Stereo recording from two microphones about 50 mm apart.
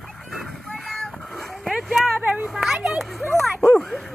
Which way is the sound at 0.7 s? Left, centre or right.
Centre.